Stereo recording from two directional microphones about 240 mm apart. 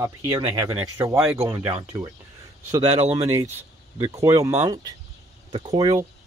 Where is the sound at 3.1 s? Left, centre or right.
Centre.